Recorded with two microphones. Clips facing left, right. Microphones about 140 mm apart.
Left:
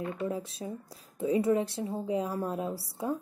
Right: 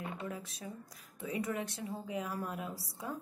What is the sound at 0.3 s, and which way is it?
A woman's voice, 30° left (ahead or behind).